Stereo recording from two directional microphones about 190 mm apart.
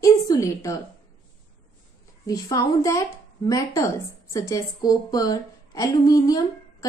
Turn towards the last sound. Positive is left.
turn(degrees=20)  # may be behind; listen again after turning